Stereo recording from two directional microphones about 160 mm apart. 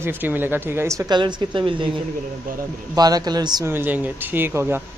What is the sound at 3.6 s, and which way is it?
Speech, 10° right (ahead or behind).